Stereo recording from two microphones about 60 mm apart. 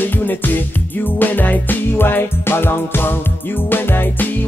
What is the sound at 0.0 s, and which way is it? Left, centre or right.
Music, left.